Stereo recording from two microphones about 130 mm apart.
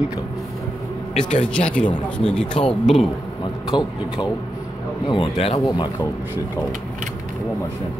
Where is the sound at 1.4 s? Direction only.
10° left (ahead or behind).